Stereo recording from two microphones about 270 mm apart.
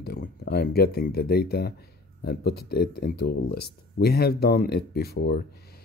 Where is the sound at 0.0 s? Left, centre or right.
Left.